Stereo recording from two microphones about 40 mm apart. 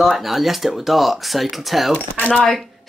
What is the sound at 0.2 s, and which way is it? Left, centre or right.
Speech, centre.